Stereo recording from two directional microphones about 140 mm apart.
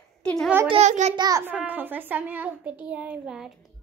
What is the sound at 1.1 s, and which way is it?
Speech, 30° right (ahead or behind).